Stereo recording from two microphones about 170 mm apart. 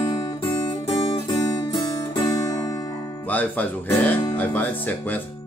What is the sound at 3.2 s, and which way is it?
Speech, 10° left (ahead or behind).